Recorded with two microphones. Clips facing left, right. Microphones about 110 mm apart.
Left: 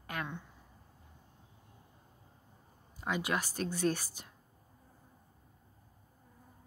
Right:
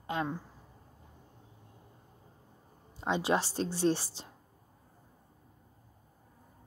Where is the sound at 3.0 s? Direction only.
25° right (ahead or behind).